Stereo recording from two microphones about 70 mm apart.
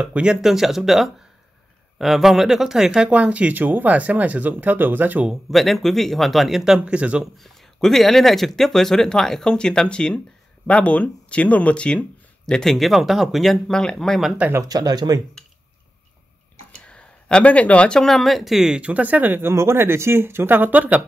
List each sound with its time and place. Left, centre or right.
0.0 s speech: centre
5.3 s speech: centre
7.3 s speech: centre
14.6 s speech: right
16.8 s speech: centre
18.8 s speech: right